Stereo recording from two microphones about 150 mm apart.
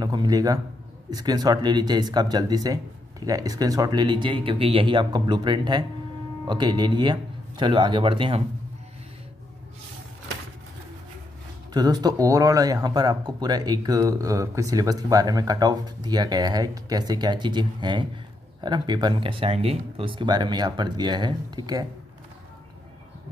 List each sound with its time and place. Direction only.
0.0 s a man's voice: 25° right (ahead or behind)
11.7 s speech: 25° right (ahead or behind)